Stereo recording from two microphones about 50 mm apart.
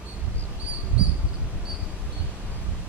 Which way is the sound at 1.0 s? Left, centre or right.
Right.